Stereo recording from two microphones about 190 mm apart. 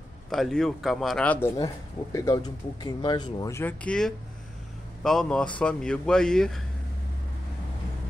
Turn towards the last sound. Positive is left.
turn(degrees=5)  # may be behind; listen again after turning